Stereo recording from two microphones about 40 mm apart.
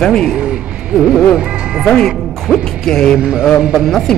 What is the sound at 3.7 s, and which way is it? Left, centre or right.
Speech, centre.